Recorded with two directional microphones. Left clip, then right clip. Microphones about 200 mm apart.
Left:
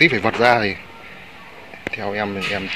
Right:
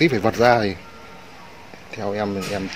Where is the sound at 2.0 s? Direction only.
10° right (ahead or behind).